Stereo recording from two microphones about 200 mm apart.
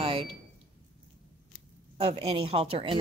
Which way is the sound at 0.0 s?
25° right (ahead or behind).